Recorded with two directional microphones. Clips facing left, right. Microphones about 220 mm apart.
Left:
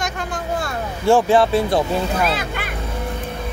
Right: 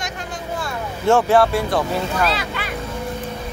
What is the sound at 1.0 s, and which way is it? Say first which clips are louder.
Speech: left 1 dB; 15° left (ahead or behind).